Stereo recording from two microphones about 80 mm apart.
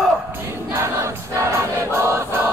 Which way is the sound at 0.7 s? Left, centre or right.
Right.